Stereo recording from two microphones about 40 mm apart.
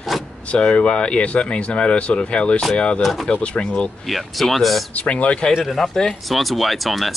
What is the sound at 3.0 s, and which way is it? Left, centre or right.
Speech, centre.